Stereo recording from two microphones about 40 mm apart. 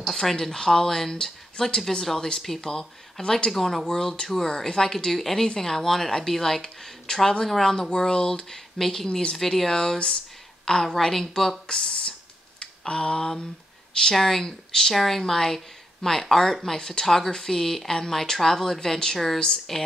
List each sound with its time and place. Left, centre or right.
0.0 s speech: centre
3.8 s speech: centre
11.6 s a sound: left
14.1 s speech: centre